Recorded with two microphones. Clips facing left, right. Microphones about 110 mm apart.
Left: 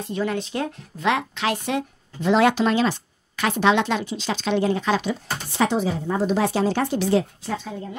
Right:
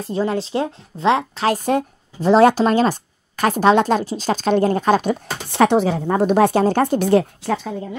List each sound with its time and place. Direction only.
0.0 s speech: 35° right (ahead or behind); by 8.0 s 70° right (ahead or behind)